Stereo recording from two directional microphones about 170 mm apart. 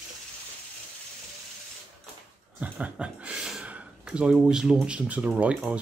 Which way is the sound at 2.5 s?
10° right (ahead or behind).